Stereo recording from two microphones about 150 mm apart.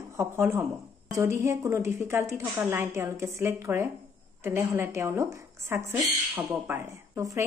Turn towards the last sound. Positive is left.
turn(degrees=-20)  # may be behind; listen again after turning